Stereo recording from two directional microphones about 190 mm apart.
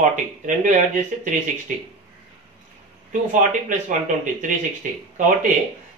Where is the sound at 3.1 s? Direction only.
40° right (ahead or behind).